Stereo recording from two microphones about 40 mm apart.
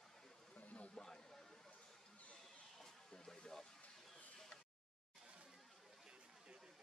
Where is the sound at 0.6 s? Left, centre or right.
Left.